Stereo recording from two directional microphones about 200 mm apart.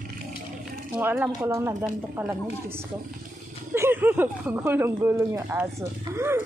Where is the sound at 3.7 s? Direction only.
10° right (ahead or behind).